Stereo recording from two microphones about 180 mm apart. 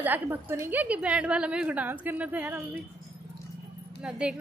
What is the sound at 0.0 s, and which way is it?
A woman's voice, 10° right (ahead or behind).